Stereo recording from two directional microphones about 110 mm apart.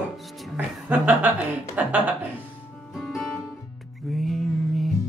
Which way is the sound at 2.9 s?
Centre (ahead or behind).